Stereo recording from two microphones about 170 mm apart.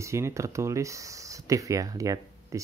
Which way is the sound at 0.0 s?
15° right (ahead or behind).